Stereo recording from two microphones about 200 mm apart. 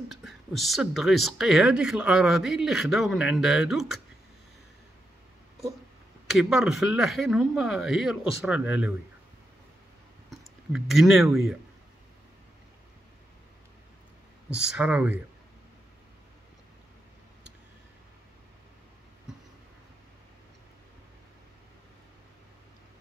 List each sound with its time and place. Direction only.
0.1 s speech: centre (ahead or behind)
6.3 s speech: centre (ahead or behind)
10.3 s a sound: centre (ahead or behind)
14.5 s speech: 5° right (ahead or behind)